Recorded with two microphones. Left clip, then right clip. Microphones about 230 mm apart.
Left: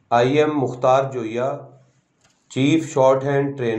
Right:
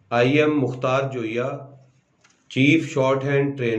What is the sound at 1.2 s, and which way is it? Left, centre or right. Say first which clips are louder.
Speech: left 2 dB; centre.